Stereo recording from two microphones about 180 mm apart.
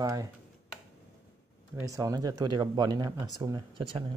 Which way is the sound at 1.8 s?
20° right (ahead or behind).